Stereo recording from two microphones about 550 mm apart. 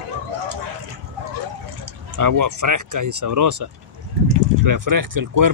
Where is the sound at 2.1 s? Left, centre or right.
Right.